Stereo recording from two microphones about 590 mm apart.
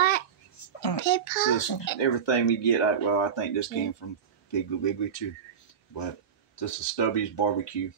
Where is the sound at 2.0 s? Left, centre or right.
Left.